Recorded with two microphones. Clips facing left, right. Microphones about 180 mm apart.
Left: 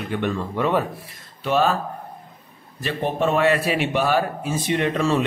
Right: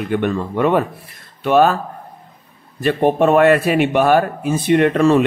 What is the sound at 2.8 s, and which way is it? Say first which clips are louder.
Speech: right 8 dB; 55° right (ahead or behind).